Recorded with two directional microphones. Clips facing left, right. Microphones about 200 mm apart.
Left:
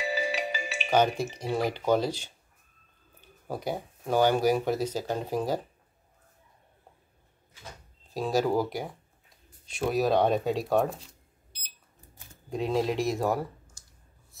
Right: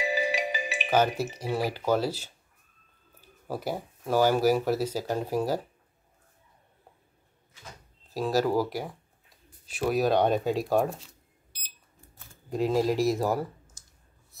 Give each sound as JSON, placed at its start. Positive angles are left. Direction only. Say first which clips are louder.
{"t": 0.0, "sound": "music", "louder": "right 2 dB", "side_deg": -15}
{"t": 0.9, "sound": "speech", "louder": "even", "side_deg": -5}
{"t": 8.1, "sound": "speech", "louder": "right 1 dB", "side_deg": 0}
{"t": 12.4, "sound": "speech", "louder": "right 2 dB", "side_deg": 0}